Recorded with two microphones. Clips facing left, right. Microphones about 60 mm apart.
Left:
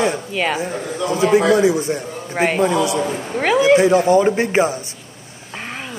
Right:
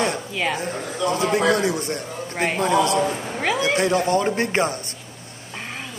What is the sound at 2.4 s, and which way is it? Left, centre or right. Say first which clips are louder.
Speech: left 6 dB; left.